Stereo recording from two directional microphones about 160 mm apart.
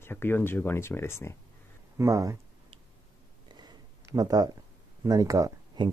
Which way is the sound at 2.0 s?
20° right (ahead or behind).